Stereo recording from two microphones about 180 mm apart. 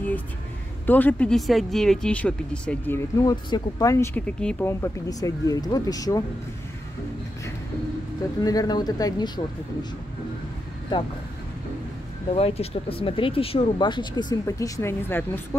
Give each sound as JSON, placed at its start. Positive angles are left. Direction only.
{"t": 0.8, "sound": "speech", "side_deg": 10}
{"t": 8.5, "sound": "speech", "side_deg": 20}
{"t": 12.4, "sound": "speech", "side_deg": 35}